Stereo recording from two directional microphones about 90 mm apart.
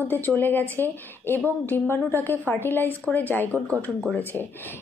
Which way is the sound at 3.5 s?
35° right (ahead or behind).